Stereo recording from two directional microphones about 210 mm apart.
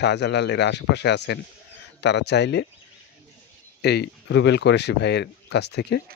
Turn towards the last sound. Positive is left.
turn(degrees=55)  # may be behind; listen again after turning